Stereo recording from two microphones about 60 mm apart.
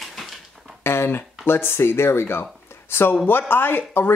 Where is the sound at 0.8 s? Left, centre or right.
Left.